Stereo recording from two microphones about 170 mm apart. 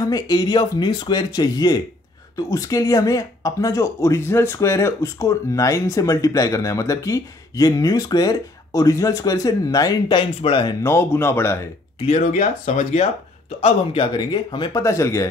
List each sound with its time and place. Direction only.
0.0 s speech: 20° left (ahead or behind)
10.8 s speech: 15° left (ahead or behind)
12.2 s speech: 50° left (ahead or behind)
13.6 s speech: 35° left (ahead or behind); by 15.2 s 15° left (ahead or behind)